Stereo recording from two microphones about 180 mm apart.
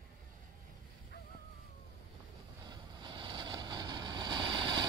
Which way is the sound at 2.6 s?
25° right (ahead or behind).